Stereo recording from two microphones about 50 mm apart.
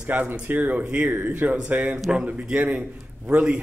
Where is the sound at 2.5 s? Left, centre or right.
Right.